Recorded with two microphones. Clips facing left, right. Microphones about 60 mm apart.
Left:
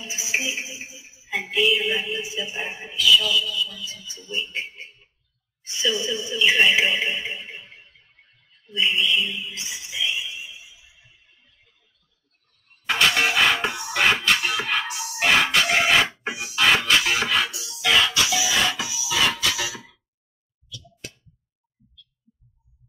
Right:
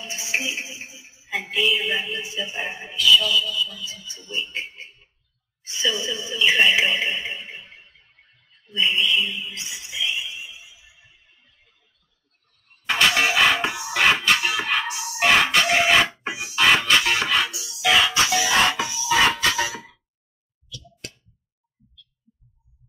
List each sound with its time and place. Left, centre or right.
0.0 s music: centre
5.7 s speech: centre
12.8 s music: centre
18.3 s music: right